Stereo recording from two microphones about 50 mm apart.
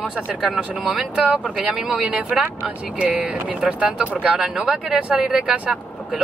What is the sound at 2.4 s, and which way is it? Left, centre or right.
Speech, right.